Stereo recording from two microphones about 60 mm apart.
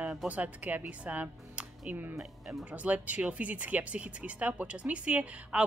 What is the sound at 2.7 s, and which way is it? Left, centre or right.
Speech, right.